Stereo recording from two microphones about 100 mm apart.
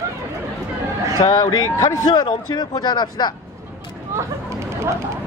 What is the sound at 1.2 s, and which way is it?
Speech, 45° left (ahead or behind).